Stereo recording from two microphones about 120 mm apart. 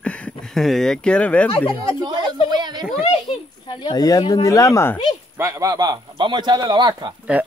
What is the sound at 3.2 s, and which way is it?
A child's voice, 40° left (ahead or behind).